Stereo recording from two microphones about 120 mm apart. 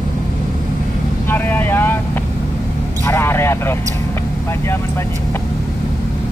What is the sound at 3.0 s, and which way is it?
Vehicle, 20° left (ahead or behind).